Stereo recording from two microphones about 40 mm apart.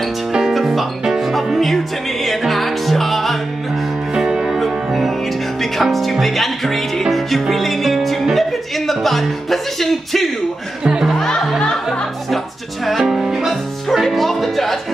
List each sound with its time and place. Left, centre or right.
0.5 s music: centre
2.2 s music: centre
4.1 s music: centre
4.6 s music: centre
10.8 s speech: centre
11.2 s music: centre
12.8 s music: centre
13.5 s music: centre